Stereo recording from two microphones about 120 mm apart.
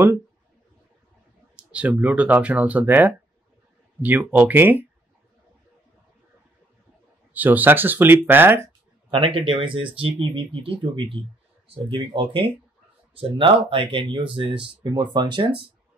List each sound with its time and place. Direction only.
1.6 s speech: 10° right (ahead or behind)
7.3 s speech: 15° right (ahead or behind)
9.1 s speech: 45° right (ahead or behind)